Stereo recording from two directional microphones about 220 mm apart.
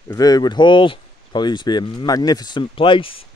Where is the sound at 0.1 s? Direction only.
15° left (ahead or behind).